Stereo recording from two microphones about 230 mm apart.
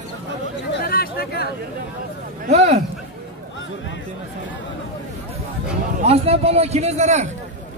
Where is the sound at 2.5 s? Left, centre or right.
Right.